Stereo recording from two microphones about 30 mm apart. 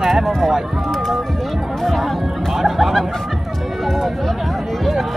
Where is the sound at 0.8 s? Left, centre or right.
Centre.